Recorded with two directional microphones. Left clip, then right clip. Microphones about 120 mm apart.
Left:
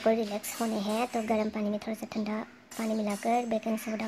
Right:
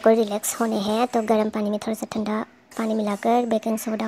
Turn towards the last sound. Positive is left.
turn(degrees=-40)  # may be behind; listen again after turning